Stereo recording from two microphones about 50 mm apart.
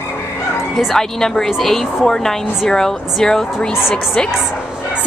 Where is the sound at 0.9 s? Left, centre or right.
Centre.